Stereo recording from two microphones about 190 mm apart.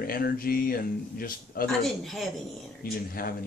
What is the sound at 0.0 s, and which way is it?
Speech, 50° left (ahead or behind).